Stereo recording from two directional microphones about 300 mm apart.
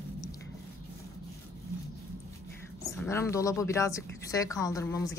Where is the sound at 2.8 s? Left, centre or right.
Centre.